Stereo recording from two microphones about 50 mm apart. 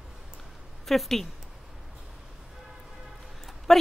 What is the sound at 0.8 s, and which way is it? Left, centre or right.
Speech, centre.